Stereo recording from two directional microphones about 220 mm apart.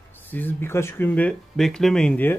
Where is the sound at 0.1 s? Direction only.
10° left (ahead or behind).